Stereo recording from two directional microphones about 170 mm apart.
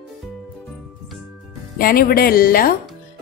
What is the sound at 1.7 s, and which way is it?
Speech, 60° left (ahead or behind).